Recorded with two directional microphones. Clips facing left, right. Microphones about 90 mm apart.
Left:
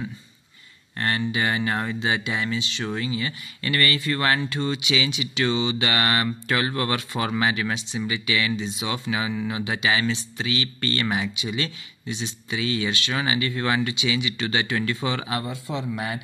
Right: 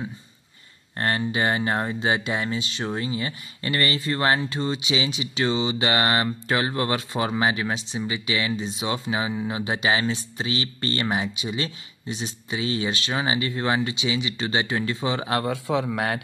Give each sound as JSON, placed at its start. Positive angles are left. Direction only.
{"t": 0.9, "sound": "speech", "side_deg": -35}
{"t": 15.4, "sound": "a man's voice", "side_deg": -65}